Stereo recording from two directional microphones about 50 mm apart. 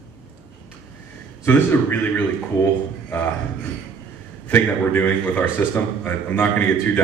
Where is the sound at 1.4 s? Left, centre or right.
Left.